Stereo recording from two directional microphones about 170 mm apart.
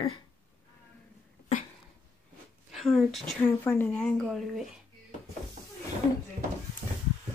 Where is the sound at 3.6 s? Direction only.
10° left (ahead or behind).